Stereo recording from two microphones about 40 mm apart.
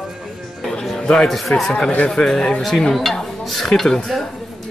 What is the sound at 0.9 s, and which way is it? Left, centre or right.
Speech, centre.